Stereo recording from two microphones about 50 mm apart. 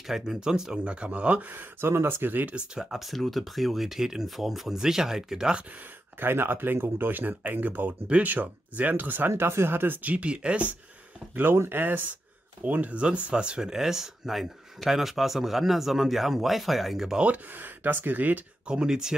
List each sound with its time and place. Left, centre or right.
0.0 s speech: centre; by 1.5 s right
1.5 s speech: right
1.9 s speech: right
2.8 s speech: centre
5.7 s speech: right
9.4 s speech: right
10.0 s speech: right
11.7 s speech: right; by 17.2 s centre
17.2 s speech: right
18.7 s speech: centre